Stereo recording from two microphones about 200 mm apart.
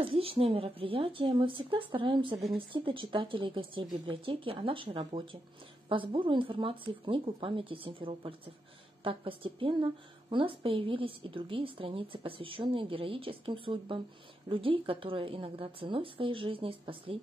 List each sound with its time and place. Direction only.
0.0 s a woman's voice: 30° right (ahead or behind)